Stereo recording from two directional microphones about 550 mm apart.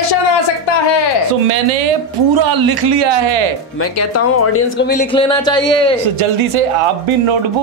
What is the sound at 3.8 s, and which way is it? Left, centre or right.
Speech, left.